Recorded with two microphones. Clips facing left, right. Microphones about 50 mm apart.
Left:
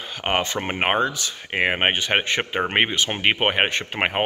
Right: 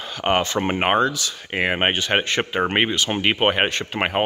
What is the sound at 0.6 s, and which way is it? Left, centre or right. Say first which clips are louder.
Speech: right 3 dB; centre.